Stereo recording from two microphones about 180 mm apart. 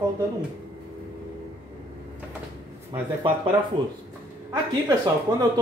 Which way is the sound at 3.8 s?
30° right (ahead or behind).